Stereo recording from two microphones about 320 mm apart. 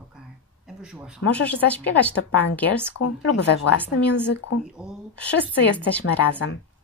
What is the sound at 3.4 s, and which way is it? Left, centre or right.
Speech, left.